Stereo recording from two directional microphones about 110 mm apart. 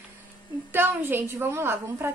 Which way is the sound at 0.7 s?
20° right (ahead or behind).